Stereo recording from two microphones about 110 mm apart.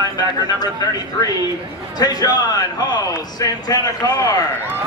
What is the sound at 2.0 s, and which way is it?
A man's voice, 35° left (ahead or behind).